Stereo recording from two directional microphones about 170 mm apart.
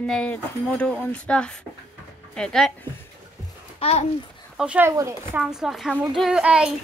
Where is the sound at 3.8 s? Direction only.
35° left (ahead or behind).